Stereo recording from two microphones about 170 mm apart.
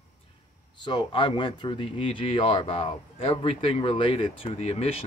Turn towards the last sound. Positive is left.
turn(degrees=40)  # may be behind; listen again after turning